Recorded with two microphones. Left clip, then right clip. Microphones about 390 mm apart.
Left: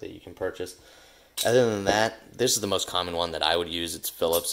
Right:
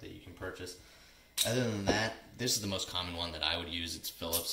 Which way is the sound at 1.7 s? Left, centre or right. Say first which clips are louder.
Left 9 dB; centre.